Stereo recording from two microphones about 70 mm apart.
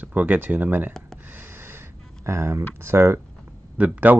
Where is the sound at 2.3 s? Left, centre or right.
Right.